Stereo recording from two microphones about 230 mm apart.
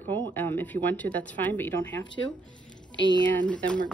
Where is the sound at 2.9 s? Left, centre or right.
Left.